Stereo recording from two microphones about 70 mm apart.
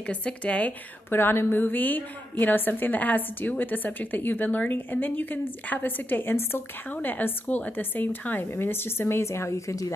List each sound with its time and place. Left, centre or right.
0.0 s speech: centre
1.1 s a woman's voice: left